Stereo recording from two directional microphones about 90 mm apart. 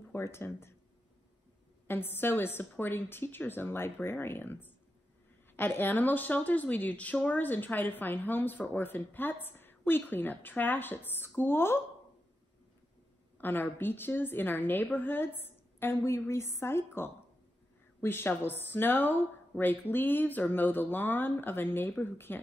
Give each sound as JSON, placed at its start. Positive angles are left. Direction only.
{"t": 0.1, "sound": "speech", "side_deg": 30}
{"t": 1.9, "sound": "speech", "side_deg": 25}
{"t": 13.4, "sound": "speech", "side_deg": 20}